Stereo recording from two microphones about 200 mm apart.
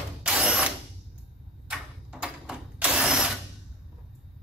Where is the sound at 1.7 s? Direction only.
5° right (ahead or behind).